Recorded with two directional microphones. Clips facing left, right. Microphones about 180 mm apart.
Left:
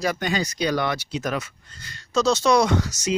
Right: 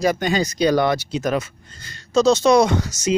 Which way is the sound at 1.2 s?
25° right (ahead or behind).